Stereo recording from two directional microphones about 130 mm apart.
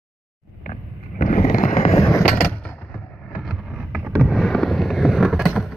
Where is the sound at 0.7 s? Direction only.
90° left; by 2.0 s 60° left (ahead or behind).